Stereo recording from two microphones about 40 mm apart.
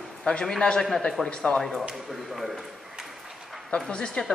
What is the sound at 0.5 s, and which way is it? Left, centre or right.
Speech, centre.